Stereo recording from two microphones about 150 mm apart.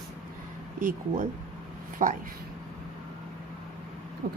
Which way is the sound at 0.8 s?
60° right (ahead or behind).